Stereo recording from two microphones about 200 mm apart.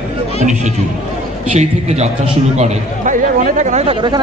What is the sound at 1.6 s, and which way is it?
Speech, 35° right (ahead or behind).